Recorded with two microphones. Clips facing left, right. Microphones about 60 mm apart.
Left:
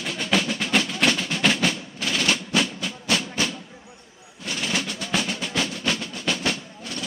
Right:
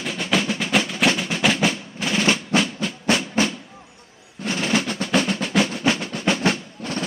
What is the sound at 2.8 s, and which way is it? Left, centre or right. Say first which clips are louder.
Music: right 4 dB; right.